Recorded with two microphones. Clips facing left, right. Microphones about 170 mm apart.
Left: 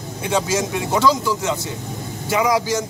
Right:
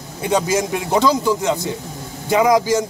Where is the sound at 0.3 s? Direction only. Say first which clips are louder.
Right 3 dB; 15° right (ahead or behind).